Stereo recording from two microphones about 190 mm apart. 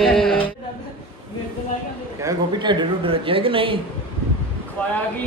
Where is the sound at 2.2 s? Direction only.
25° right (ahead or behind).